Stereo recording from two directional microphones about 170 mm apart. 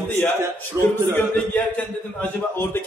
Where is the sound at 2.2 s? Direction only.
15° left (ahead or behind).